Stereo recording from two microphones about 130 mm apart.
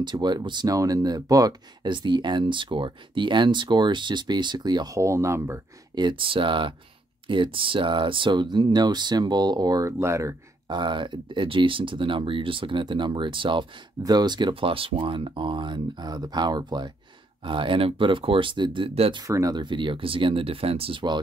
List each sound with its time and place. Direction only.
0.0 s speech: 35° right (ahead or behind)
5.9 s speech: 40° right (ahead or behind); by 10.3 s 20° right (ahead or behind)
10.7 s speech: 35° right (ahead or behind)
19.2 s speech: 25° right (ahead or behind)